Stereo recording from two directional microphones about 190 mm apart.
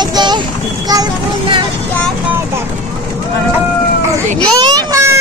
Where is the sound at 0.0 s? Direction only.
20° right (ahead or behind).